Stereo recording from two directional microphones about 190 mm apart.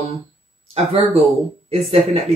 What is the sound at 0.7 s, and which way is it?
Speech, 35° right (ahead or behind).